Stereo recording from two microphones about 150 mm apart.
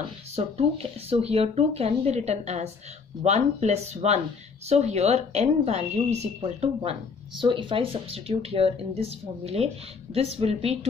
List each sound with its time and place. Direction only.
0.4 s a woman's voice: 40° right (ahead or behind)